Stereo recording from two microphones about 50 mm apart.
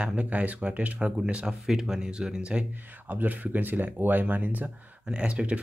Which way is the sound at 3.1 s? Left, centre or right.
Right.